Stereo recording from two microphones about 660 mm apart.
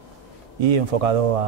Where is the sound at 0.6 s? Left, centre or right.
Right.